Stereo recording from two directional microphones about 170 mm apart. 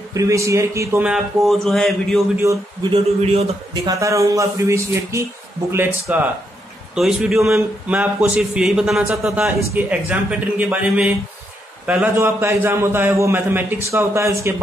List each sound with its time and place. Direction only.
0.1 s a man's voice: 20° right (ahead or behind)
1.0 s a man's voice: centre (ahead or behind)
2.4 s a man's voice: 20° right (ahead or behind)
2.9 s a man's voice: 35° right (ahead or behind)
3.8 s a man's voice: 20° right (ahead or behind)